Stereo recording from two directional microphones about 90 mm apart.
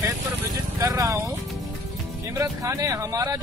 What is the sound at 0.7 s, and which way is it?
Speech, 40° right (ahead or behind).